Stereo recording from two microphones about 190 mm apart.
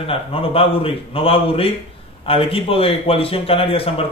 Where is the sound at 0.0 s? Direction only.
30° left (ahead or behind).